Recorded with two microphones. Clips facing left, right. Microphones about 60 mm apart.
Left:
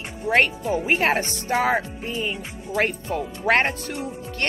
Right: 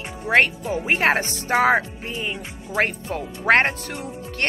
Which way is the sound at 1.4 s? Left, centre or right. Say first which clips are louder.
Right 4 dB; right.